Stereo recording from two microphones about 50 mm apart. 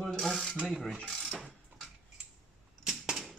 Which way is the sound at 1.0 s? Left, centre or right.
Centre.